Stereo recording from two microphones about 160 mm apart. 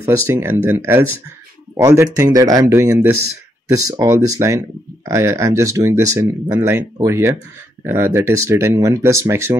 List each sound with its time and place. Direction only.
0.0 s speech: 15° right (ahead or behind)